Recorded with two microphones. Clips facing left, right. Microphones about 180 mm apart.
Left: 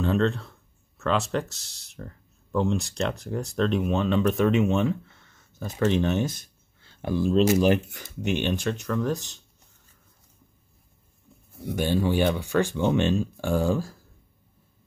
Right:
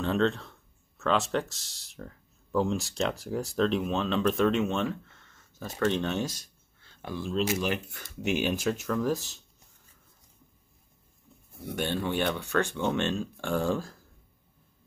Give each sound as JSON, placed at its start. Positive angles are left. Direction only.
{"t": 0.0, "sound": "speech", "side_deg": 0}
{"t": 7.0, "sound": "speech", "side_deg": 30}
{"t": 8.0, "sound": "speech", "side_deg": -5}
{"t": 11.7, "sound": "speech", "side_deg": 5}